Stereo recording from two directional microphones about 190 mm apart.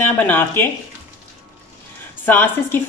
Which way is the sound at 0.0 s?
10° left (ahead or behind).